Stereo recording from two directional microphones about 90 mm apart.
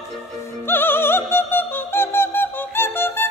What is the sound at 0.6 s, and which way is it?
Opera, 25° left (ahead or behind).